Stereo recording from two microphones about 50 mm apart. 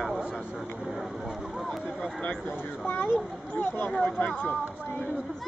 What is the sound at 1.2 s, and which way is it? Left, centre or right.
Speech, centre.